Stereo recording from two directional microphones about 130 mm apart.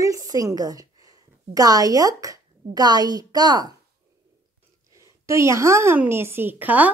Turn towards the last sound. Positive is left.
turn(degrees=-10)  # may be behind; listen again after turning